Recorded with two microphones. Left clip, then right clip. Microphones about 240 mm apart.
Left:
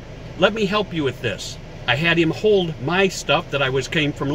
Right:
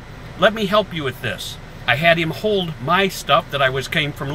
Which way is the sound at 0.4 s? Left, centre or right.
Centre.